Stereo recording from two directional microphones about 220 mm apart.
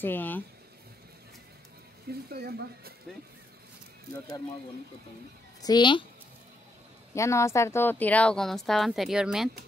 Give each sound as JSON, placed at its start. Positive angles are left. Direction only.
{"t": 0.0, "sound": "speech", "side_deg": 10}
{"t": 2.0, "sound": "speech", "side_deg": -45}
{"t": 5.6, "sound": "a woman's voice", "side_deg": 20}
{"t": 7.2, "sound": "speech", "side_deg": 15}